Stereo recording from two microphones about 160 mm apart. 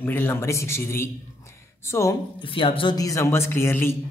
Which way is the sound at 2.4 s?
35° left (ahead or behind).